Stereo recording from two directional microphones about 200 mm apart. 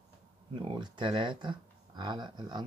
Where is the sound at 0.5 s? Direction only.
25° right (ahead or behind).